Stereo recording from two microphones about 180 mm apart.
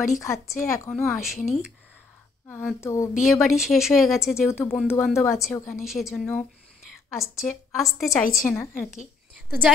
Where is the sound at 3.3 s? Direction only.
Centre (ahead or behind).